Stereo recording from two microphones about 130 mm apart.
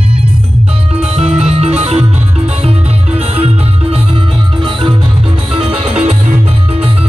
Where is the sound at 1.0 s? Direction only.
50° right (ahead or behind).